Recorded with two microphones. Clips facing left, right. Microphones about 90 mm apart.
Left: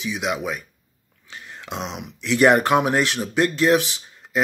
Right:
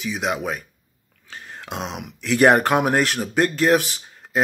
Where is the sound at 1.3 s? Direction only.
40° right (ahead or behind).